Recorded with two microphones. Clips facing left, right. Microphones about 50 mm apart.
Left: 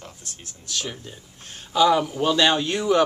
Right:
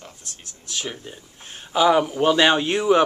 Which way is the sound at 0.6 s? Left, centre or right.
Centre.